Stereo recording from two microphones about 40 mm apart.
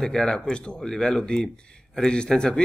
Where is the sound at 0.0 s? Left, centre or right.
Centre.